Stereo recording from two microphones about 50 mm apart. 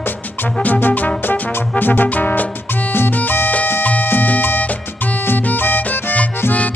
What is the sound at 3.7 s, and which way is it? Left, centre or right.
Salsa music, left.